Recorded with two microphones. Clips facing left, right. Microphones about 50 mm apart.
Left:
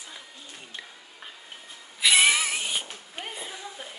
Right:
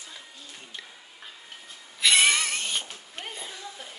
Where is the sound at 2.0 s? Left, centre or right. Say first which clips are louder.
Left 1 dB; centre.